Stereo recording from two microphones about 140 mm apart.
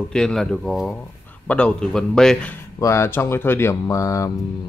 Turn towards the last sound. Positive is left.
turn(degrees=25)  # may be behind; listen again after turning